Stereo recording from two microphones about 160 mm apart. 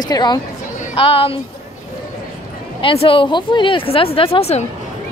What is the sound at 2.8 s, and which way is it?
Speech, 35° left (ahead or behind).